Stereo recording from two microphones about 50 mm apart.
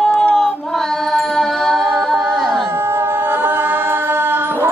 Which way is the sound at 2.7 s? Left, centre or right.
Right.